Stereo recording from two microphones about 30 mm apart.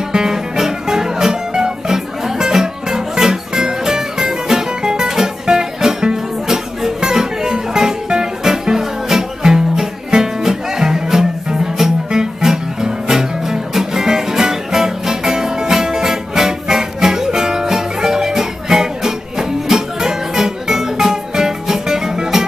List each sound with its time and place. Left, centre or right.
0.1 s music: centre